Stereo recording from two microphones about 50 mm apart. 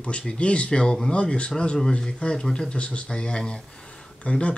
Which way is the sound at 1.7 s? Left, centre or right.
Centre.